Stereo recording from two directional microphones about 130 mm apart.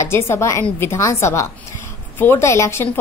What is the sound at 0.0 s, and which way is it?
A woman's voice, 20° left (ahead or behind).